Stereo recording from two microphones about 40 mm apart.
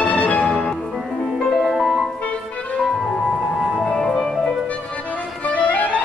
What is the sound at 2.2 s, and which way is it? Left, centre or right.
Music, left.